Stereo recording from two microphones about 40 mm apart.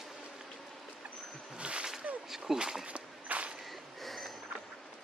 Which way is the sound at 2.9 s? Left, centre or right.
Right.